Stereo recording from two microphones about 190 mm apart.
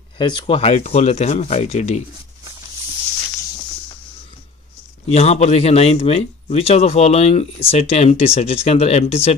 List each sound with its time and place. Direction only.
0.2 s speech: 25° left (ahead or behind)
5.0 s speech: 35° left (ahead or behind)